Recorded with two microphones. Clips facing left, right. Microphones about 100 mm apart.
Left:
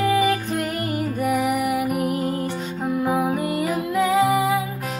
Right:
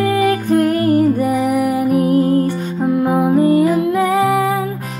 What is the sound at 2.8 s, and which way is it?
Music, 35° right (ahead or behind).